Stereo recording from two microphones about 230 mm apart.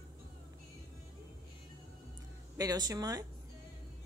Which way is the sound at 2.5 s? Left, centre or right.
Centre.